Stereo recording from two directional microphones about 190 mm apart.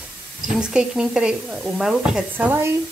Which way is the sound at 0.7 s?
5° right (ahead or behind).